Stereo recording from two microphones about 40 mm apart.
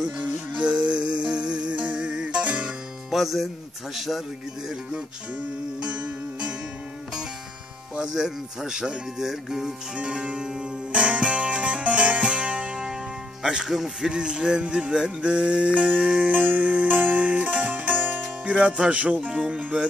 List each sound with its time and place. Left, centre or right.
0.6 s music: right
3.1 s speech: centre
5.8 s music: right
7.9 s speech: centre
9.9 s music: right
13.7 s speech: centre
14.0 s music: right
16.2 s music: right